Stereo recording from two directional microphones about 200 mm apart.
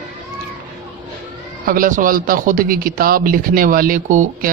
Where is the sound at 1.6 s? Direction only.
40° right (ahead or behind).